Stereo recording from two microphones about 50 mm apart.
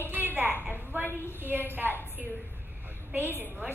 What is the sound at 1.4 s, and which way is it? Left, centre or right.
Speech, right.